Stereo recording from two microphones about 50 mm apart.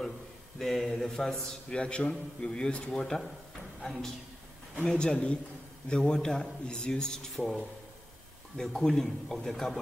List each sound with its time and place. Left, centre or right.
0.6 s speech: centre
1.8 s a man's voice: left
4.9 s a man's voice: centre